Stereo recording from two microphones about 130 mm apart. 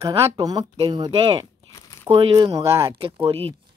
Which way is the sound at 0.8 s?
40° right (ahead or behind).